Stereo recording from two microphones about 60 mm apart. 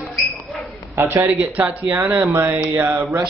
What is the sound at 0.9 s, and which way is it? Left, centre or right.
Speech, right.